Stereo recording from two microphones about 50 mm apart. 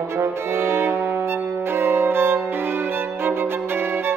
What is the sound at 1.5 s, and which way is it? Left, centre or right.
Violin, right.